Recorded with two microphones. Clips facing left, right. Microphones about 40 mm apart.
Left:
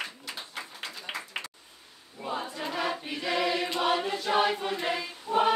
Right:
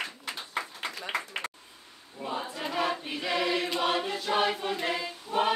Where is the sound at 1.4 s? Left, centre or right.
Right.